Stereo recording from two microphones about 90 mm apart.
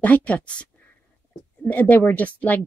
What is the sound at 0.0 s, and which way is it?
Speech, 15° left (ahead or behind).